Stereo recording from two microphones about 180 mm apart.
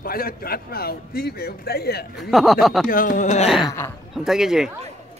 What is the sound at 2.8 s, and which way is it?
Speech, 50° left (ahead or behind).